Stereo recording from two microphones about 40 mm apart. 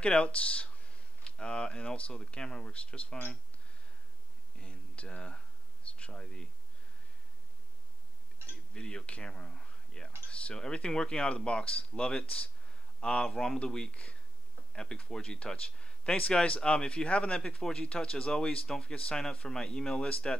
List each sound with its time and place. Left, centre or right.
0.0 s speech: left
4.6 s a sound: left
5.9 s speech: left
8.7 s speech: left
14.7 s insect: centre
15.0 s speech: left